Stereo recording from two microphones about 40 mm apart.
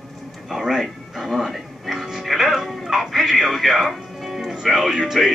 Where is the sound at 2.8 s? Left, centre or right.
Centre.